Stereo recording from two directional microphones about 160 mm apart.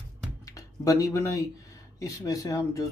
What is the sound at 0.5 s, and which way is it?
Speech, 20° left (ahead or behind).